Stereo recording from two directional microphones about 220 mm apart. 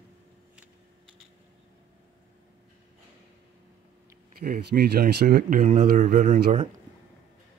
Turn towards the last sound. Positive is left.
turn(degrees=-35)  # may be behind; listen again after turning